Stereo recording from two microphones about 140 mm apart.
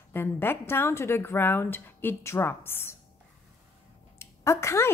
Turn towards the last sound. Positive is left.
turn(degrees=20)  # may be behind; listen again after turning